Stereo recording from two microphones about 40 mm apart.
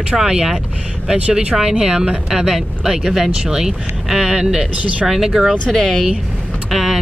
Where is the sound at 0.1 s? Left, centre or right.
Centre.